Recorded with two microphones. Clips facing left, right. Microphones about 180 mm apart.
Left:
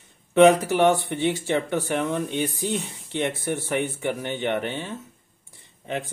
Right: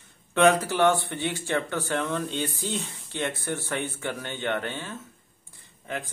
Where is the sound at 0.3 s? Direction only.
20° left (ahead or behind).